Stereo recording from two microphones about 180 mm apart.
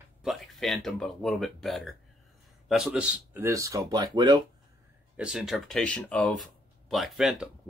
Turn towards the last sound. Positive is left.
turn(degrees=0)  # may be behind; listen again after turning